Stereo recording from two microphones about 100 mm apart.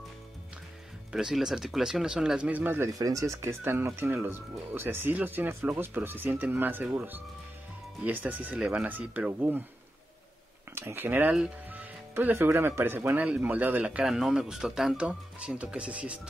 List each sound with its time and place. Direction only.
1.1 s speech: 5° right (ahead or behind); by 2.9 s 20° right (ahead or behind)
2.9 s speech: 35° right (ahead or behind); by 7.0 s 20° right (ahead or behind)
8.0 s speech: 15° right (ahead or behind)
10.7 s speech: 20° right (ahead or behind)
14.0 s speech: 5° right (ahead or behind)